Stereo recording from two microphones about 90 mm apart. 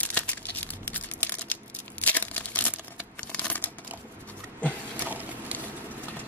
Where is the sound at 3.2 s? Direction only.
15° left (ahead or behind).